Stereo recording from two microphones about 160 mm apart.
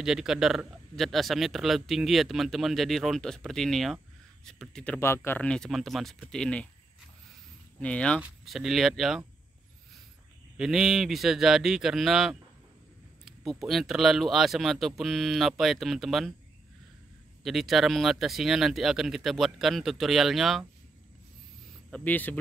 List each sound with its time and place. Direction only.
0.0 s a man's voice: 5° right (ahead or behind)
7.8 s a man's voice: 5° left (ahead or behind)
10.6 s a man's voice: centre (ahead or behind)
17.4 s a man's voice: centre (ahead or behind)
21.9 s speech: 10° left (ahead or behind)